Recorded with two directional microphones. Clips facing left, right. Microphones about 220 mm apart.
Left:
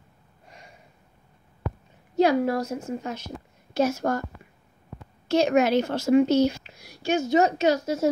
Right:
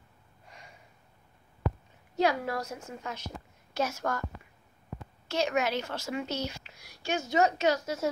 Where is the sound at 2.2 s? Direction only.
35° left (ahead or behind).